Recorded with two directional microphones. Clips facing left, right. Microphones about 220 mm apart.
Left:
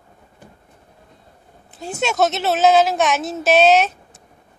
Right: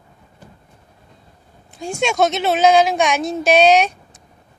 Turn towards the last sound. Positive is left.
turn(degrees=0)  # may be behind; listen again after turning